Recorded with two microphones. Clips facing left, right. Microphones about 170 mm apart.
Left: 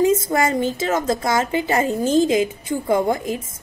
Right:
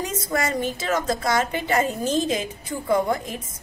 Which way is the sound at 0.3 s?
25° left (ahead or behind).